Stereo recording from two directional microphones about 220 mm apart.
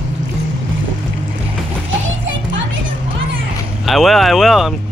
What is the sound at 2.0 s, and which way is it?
Music, 60° right (ahead or behind).